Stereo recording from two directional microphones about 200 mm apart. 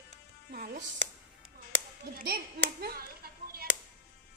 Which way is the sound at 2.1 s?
50° right (ahead or behind).